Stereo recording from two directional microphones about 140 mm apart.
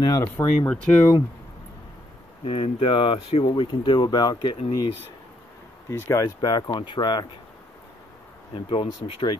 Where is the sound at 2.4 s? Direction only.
40° left (ahead or behind).